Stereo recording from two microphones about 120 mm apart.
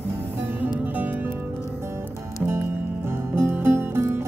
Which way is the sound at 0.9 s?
15° right (ahead or behind).